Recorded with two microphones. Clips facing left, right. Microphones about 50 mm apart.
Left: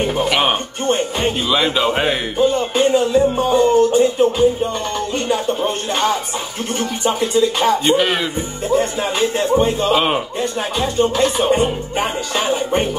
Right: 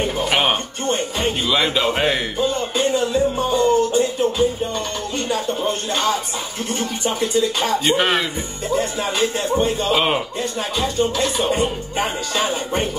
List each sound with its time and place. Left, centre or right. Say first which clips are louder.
1.5 s speech: left 2 dB; centre
2.3 s music: left 5 dB; left
9.9 s speech: even; centre
11.0 s music: left 5 dB; left